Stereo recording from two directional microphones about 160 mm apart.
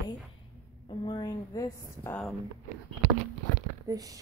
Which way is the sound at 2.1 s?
5° left (ahead or behind).